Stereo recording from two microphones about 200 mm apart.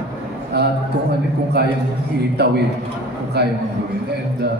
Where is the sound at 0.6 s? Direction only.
55° right (ahead or behind).